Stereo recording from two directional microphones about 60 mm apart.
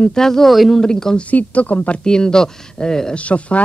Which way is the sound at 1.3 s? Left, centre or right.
Left.